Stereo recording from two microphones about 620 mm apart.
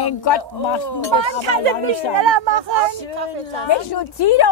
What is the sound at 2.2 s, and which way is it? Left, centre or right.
Speech, right.